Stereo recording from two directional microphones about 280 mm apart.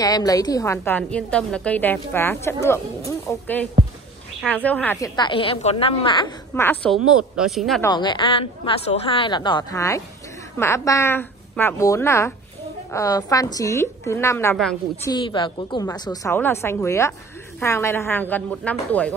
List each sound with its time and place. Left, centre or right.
0.0 s a woman's voice: centre
7.9 s a woman's voice: centre
15.0 s a woman's voice: centre